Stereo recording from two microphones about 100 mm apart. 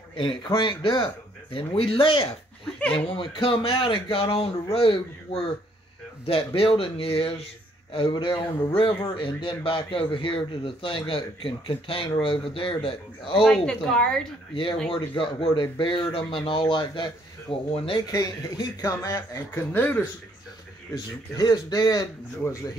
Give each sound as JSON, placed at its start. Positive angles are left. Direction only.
{"t": 0.1, "sound": "a man's voice", "side_deg": 55}
{"t": 7.9, "sound": "a man's voice", "side_deg": 50}
{"t": 13.4, "sound": "speech", "side_deg": 5}
{"t": 14.5, "sound": "a man's voice", "side_deg": 55}
{"t": 18.1, "sound": "speech", "side_deg": 40}
{"t": 19.7, "sound": "speech", "side_deg": 20}
{"t": 20.9, "sound": "speech", "side_deg": 45}